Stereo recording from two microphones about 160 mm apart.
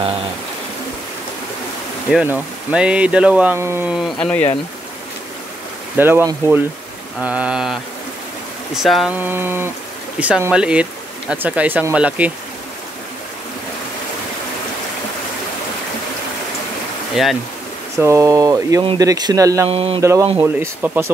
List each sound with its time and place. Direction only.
2.2 s speech: 10° right (ahead or behind)
3.9 s mantra: centre (ahead or behind)
5.9 s speech: 15° right (ahead or behind)
7.2 s mantra: 5° right (ahead or behind)
8.8 s speech: centre (ahead or behind)
17.1 s speech: centre (ahead or behind)
17.9 s speech: 20° right (ahead or behind)
19.7 s speech: 40° right (ahead or behind)
20.0 s speech: 20° right (ahead or behind)